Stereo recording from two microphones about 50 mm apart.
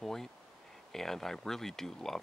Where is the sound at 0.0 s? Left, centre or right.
Centre.